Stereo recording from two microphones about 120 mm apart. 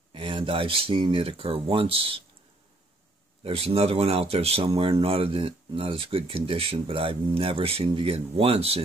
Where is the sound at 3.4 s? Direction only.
55° right (ahead or behind).